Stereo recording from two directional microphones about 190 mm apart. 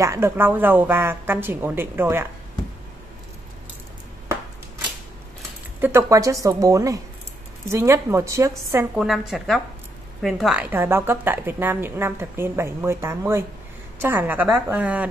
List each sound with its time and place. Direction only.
0.0 s a woman's voice: 15° right (ahead or behind)
5.8 s a woman's voice: 15° right (ahead or behind)
8.9 s a woman's voice: centre (ahead or behind)